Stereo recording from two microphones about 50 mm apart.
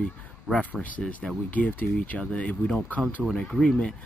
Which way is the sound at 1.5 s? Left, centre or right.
Left.